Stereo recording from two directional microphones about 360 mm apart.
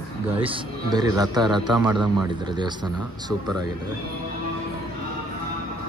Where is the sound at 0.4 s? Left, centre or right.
Centre.